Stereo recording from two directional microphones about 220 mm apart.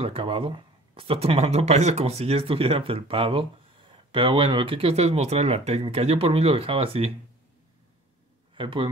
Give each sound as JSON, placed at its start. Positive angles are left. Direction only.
{"t": 0.0, "sound": "speech", "side_deg": -25}
{"t": 8.5, "sound": "a man's voice", "side_deg": -25}